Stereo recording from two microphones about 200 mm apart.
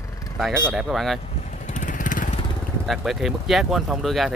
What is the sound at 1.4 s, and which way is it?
Vehicle, 40° left (ahead or behind).